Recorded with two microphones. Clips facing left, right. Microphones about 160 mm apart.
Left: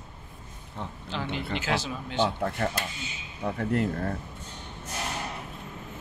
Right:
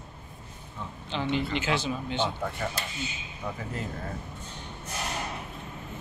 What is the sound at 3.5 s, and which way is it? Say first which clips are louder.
Speech: left 9 dB; 65° left (ahead or behind).